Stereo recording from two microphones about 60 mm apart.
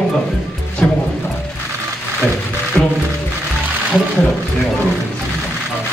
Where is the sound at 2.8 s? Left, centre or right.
Left.